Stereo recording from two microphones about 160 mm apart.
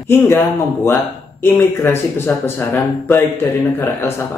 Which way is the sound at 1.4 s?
15° left (ahead or behind).